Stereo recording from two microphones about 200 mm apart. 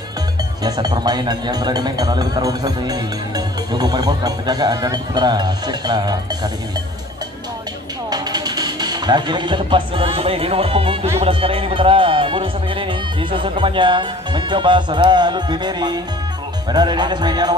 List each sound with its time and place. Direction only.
0.7 s speech: 20° right (ahead or behind)
8.1 s speech: 20° right (ahead or behind)